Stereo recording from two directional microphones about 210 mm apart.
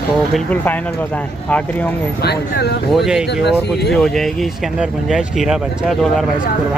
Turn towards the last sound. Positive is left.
turn(degrees=0)  # may be behind; listen again after turning